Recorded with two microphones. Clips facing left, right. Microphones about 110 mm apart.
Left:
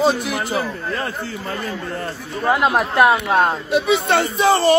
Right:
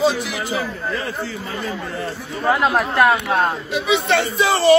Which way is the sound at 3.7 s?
50° left (ahead or behind).